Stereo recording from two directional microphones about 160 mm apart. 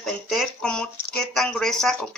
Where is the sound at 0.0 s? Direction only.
Centre (ahead or behind).